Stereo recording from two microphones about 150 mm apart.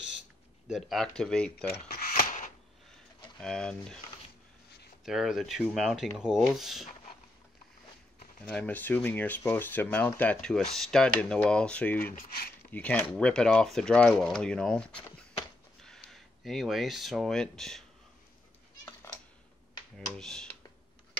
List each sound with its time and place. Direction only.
0.7 s speech: centre (ahead or behind)
1.9 s a sound: 70° left (ahead or behind)
3.3 s speech: 5° left (ahead or behind)
5.0 s speech: centre (ahead or behind)
8.5 s speech: 10° left (ahead or behind)
12.2 s speech: 90° left
12.7 s speech: 10° left (ahead or behind)
20.2 s speech: 5° left (ahead or behind)